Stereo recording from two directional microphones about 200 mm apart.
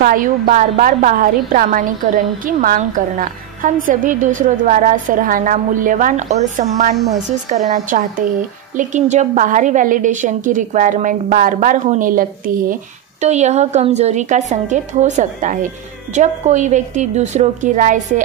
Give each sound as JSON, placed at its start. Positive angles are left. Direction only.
{"t": 0.0, "sound": "a woman's voice", "side_deg": -45}